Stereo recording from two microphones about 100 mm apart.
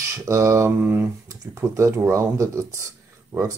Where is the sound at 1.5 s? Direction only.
30° right (ahead or behind).